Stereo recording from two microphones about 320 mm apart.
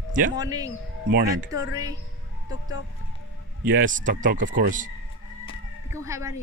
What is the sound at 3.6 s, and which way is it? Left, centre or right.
Speech, right.